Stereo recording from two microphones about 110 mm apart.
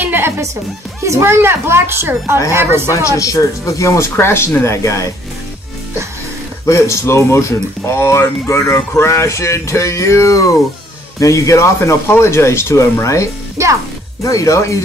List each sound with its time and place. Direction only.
0.0 s music: 20° right (ahead or behind)
1.0 s a child's voice: 25° right (ahead or behind)
2.9 s speech: 30° left (ahead or behind)
6.6 s speech: 25° left (ahead or behind)
13.6 s a child's voice: 25° right (ahead or behind)
14.2 s speech: 30° left (ahead or behind)